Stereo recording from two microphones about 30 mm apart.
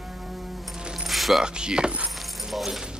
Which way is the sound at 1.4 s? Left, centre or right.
Right.